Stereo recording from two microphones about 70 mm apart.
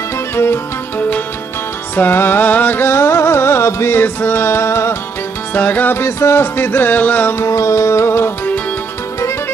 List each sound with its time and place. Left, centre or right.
0.4 s music: left
5.5 s music: left
7.4 s music: left